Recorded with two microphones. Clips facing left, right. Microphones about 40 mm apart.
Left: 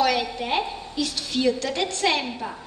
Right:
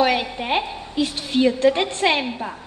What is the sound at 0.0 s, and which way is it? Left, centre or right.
A woman's voice, right.